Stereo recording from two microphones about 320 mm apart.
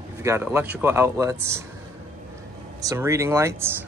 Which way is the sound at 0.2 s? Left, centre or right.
Centre.